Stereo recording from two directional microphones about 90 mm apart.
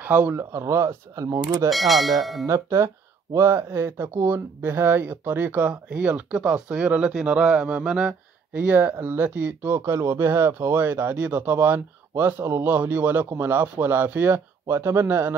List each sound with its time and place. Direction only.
0.0 s speech: 20° right (ahead or behind)
0.4 s speech: 30° right (ahead or behind)
1.7 s speech: centre (ahead or behind)
2.4 s a man's voice: 30° right (ahead or behind)